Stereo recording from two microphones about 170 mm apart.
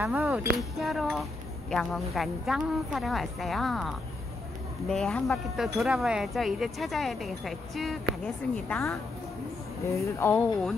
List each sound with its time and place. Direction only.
0.0 s speech: 10° right (ahead or behind)
9.8 s speech: 15° left (ahead or behind)